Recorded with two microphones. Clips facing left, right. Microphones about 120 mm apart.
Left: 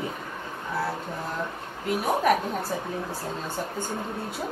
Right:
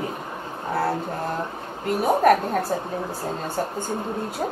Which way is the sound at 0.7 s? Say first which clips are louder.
Right 6 dB; 55° right (ahead or behind).